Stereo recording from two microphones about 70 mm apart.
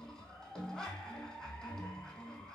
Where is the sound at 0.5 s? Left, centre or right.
Centre.